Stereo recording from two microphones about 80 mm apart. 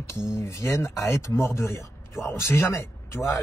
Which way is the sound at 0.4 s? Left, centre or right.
Left.